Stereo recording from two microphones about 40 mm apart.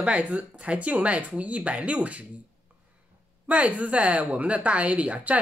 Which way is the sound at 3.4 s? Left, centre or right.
Right.